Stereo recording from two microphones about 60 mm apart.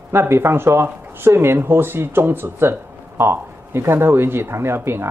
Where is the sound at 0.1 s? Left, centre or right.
Right.